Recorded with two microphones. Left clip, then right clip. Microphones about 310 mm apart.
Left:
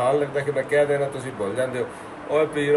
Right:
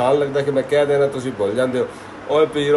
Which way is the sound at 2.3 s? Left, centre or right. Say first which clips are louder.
Right 5 dB; centre.